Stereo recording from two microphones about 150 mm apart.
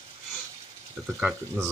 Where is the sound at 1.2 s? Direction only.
5° right (ahead or behind).